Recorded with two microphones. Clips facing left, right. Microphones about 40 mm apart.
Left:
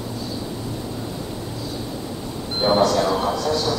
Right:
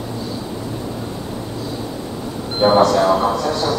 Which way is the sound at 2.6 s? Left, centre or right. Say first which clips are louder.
Right 5 dB; centre.